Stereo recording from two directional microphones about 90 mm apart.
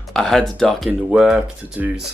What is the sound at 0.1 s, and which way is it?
Speech, 5° left (ahead or behind).